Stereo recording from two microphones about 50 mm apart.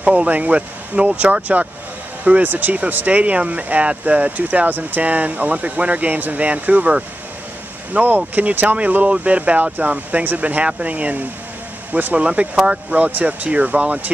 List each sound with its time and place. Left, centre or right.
0.0 s speech: right